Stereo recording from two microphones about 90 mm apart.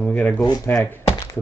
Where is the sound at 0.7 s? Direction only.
20° left (ahead or behind).